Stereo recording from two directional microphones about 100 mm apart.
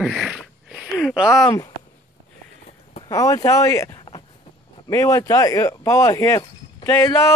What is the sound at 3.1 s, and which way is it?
Speech, 30° left (ahead or behind).